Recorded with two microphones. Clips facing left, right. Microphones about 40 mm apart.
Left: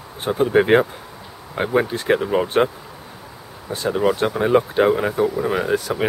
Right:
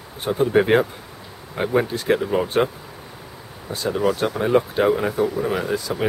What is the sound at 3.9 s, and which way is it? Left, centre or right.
Speech, centre.